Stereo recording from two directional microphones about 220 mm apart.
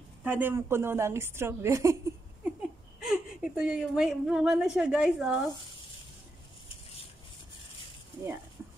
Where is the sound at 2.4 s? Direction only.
5° right (ahead or behind).